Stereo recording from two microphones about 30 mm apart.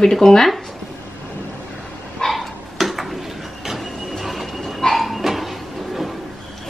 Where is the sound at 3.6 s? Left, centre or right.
Centre.